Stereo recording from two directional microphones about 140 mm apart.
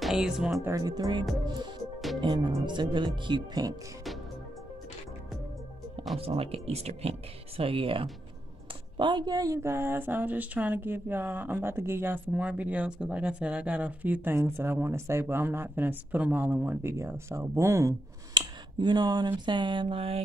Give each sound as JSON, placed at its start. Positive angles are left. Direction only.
{"t": 0.0, "sound": "speech", "side_deg": 0}
{"t": 0.7, "sound": "speech", "side_deg": -25}
{"t": 6.1, "sound": "speech", "side_deg": -45}
{"t": 18.3, "sound": "speech", "side_deg": -30}